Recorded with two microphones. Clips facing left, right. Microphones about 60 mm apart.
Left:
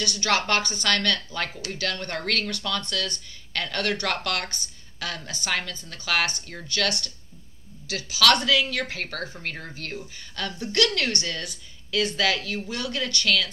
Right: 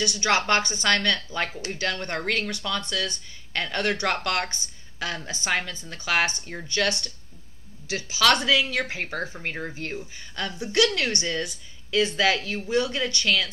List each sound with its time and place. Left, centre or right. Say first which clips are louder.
0.0 s speech: right 1 dB; right